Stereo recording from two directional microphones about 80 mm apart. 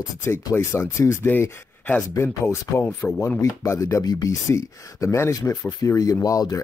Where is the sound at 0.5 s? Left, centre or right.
Left.